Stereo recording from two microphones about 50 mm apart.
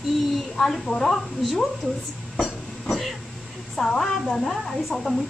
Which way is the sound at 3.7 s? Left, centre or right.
Centre.